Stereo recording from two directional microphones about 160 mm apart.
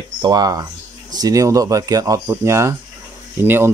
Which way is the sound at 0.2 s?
25° right (ahead or behind).